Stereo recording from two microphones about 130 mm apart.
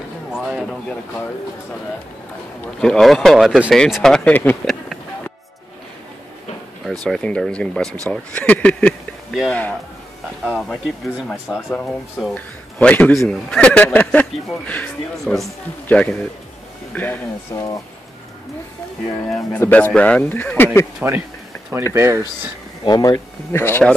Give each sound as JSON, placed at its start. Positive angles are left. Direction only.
{"t": 0.3, "sound": "speech", "side_deg": -5}
{"t": 2.8, "sound": "speech", "side_deg": 0}
{"t": 7.1, "sound": "speech", "side_deg": 5}
{"t": 19.2, "sound": "speech", "side_deg": 5}
{"t": 19.6, "sound": "speech", "side_deg": 15}
{"t": 21.0, "sound": "speech", "side_deg": -10}
{"t": 22.8, "sound": "speech", "side_deg": 30}